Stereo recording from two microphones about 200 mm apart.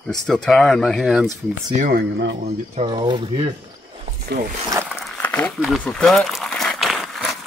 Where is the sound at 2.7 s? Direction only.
25° right (ahead or behind).